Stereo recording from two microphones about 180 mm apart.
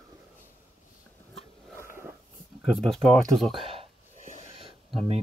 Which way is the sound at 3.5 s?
30° right (ahead or behind).